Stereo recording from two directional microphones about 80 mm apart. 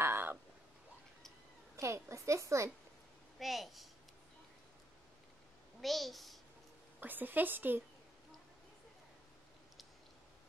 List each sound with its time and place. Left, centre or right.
0.0 s a sound: right
1.8 s a woman's voice: right
3.3 s a woman's voice: centre
5.8 s a child's voice: centre
7.0 s a woman's voice: right